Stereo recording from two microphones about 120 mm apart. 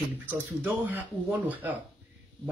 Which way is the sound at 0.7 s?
15° right (ahead or behind).